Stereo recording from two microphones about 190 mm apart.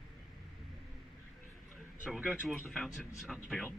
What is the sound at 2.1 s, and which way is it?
Speech, centre (ahead or behind).